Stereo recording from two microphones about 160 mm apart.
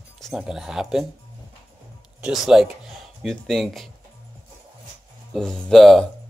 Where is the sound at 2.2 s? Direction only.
Centre (ahead or behind).